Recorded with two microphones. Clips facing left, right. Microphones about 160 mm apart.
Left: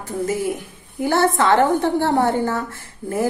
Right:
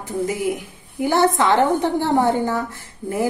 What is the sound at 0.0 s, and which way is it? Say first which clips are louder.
A woman's voice: even; 15° right (ahead or behind).